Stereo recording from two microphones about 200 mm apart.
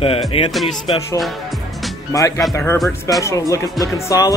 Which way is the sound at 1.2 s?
Centre (ahead or behind).